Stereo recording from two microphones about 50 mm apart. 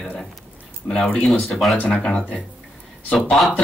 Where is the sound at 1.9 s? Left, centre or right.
Centre.